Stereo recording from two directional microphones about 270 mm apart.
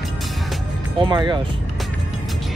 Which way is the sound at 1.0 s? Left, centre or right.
Centre.